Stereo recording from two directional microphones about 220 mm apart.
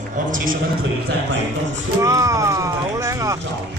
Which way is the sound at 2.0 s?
15° right (ahead or behind).